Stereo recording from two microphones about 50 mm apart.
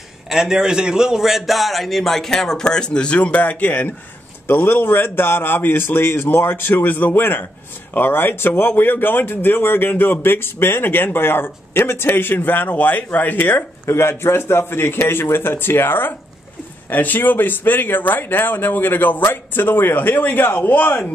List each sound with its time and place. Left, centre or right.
0.3 s a man's voice: centre; by 13.7 s left
13.8 s speech: left